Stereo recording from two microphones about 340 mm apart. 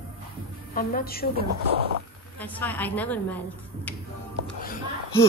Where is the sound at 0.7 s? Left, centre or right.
Left.